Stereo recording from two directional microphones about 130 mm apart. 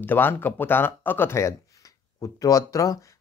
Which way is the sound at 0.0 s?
15° left (ahead or behind).